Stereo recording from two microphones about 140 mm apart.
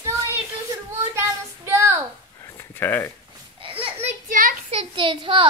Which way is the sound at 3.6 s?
40° right (ahead or behind).